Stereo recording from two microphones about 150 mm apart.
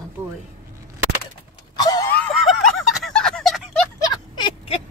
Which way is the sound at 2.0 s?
10° left (ahead or behind).